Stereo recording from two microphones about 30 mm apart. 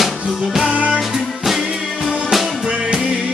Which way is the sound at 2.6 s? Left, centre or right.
Right.